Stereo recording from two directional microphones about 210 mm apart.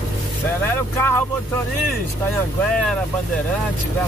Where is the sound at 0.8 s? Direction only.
10° left (ahead or behind).